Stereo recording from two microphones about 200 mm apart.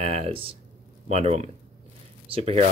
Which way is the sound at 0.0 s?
30° right (ahead or behind).